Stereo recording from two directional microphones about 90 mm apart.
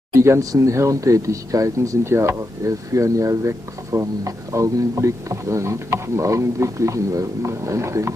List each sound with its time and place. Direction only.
0.2 s speech: 35° right (ahead or behind)